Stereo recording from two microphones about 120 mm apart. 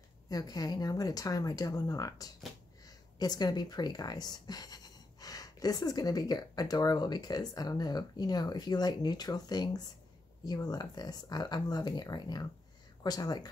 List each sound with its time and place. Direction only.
0.3 s speech: 35° left (ahead or behind)